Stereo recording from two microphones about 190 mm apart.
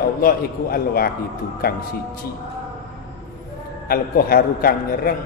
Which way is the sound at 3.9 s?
50° left (ahead or behind).